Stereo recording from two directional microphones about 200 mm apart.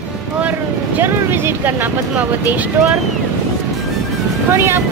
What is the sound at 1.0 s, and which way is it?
Speech, 10° right (ahead or behind).